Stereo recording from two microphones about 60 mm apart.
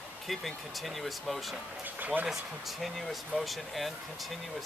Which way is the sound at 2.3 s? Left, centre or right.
Centre.